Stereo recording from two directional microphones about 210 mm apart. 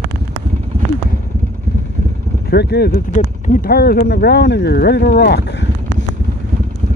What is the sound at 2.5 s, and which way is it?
Speech, 50° left (ahead or behind).